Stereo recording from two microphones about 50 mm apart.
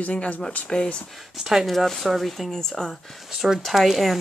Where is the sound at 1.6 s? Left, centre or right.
Centre.